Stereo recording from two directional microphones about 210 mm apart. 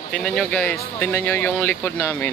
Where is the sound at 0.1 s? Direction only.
5° left (ahead or behind).